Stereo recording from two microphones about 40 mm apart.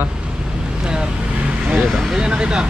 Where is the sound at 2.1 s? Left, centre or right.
Right.